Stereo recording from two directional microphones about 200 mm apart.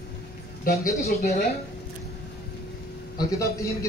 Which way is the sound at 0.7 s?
50° left (ahead or behind).